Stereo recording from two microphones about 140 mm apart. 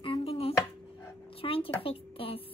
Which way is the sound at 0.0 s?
45° left (ahead or behind).